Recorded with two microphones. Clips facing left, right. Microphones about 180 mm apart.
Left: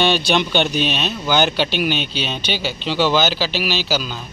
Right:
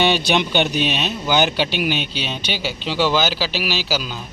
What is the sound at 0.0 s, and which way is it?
Speech, 15° right (ahead or behind).